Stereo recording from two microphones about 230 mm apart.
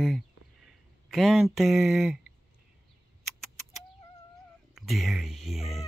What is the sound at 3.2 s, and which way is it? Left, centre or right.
Rodents, centre.